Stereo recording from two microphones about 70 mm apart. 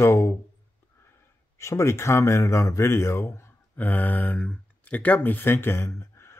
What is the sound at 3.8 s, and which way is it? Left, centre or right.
Speech, left.